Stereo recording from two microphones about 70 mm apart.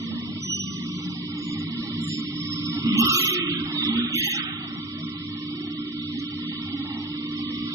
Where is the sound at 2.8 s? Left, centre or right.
Right.